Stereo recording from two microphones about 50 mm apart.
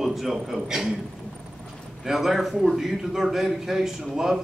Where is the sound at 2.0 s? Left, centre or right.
Centre.